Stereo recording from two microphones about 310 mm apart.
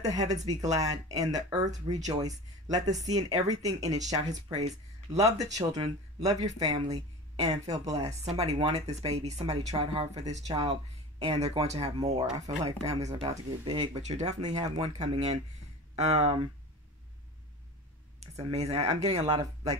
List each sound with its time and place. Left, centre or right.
0.0 s speech: right
0.5 s speech: centre
1.6 s speech: right
2.0 s speech: centre
18.3 s speech: centre